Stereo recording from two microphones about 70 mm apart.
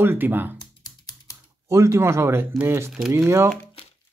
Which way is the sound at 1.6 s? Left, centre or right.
Right.